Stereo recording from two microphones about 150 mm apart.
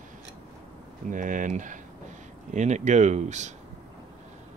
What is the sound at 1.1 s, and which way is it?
Speech, 60° right (ahead or behind).